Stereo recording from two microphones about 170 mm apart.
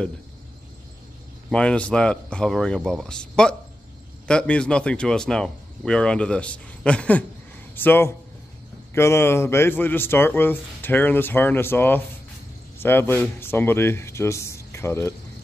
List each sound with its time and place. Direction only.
1.5 s speech: 5° left (ahead or behind)